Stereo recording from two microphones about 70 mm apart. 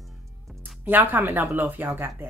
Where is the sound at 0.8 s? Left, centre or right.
Right.